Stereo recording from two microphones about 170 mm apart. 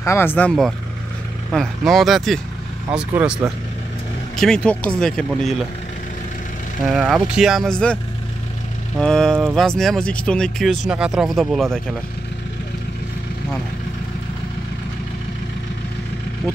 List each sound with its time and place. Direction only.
0.0 s speech: 15° left (ahead or behind); by 3.5 s 15° right (ahead or behind)
4.4 s speech: 5° left (ahead or behind)
6.9 s speech: centre (ahead or behind)
9.0 s speech: centre (ahead or behind)